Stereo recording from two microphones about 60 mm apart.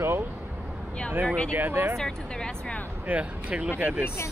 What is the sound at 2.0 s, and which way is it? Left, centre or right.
Speech, centre.